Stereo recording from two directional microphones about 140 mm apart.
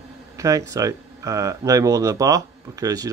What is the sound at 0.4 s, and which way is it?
Speech, 25° right (ahead or behind).